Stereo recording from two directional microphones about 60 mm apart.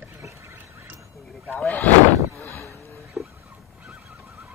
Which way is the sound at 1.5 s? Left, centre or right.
Centre.